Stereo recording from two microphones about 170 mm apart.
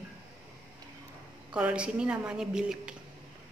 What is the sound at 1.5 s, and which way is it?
A woman's voice, 5° right (ahead or behind).